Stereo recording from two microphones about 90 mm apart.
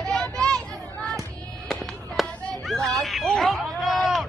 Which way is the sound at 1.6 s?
Centre (ahead or behind).